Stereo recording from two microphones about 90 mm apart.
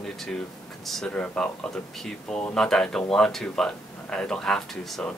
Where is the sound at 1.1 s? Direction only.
15° left (ahead or behind).